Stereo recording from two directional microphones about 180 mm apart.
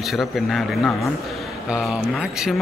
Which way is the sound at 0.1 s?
Centre (ahead or behind).